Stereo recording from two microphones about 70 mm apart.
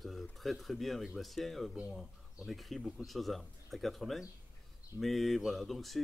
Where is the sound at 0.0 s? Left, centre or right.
Centre.